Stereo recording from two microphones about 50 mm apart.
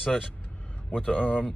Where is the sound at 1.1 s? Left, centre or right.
Centre.